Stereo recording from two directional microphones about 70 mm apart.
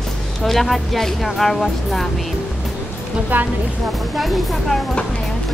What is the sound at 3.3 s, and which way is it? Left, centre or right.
Speech, right.